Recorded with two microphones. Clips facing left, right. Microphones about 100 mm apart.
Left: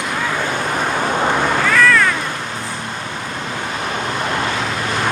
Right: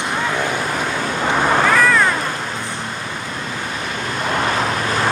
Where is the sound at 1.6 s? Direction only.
15° right (ahead or behind).